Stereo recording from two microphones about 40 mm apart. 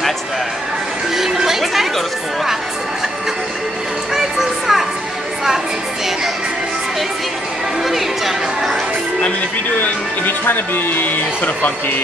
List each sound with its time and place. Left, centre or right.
1.1 s chatter: centre
4.1 s music: centre
7.8 s speech: centre
10.4 s speech: left